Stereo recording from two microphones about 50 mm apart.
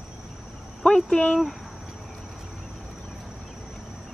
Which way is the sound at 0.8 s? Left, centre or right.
Centre.